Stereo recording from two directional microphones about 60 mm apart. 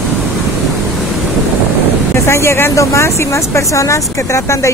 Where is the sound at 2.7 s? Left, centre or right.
Left.